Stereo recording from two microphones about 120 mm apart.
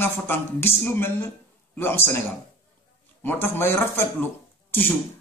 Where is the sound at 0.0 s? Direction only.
20° left (ahead or behind).